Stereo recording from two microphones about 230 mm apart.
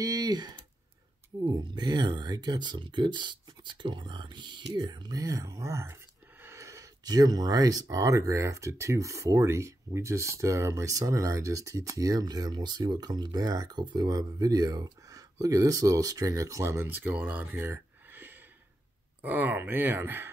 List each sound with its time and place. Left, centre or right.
0.0 s speech: centre